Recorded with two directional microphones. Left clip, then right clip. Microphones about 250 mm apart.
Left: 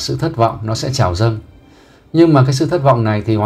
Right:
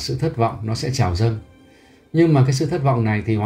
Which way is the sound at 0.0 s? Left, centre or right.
Centre.